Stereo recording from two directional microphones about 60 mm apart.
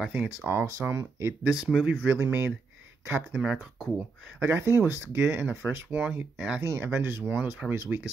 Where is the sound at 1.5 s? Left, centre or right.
Centre.